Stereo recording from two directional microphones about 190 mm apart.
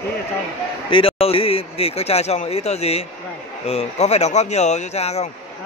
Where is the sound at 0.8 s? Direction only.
30° left (ahead or behind).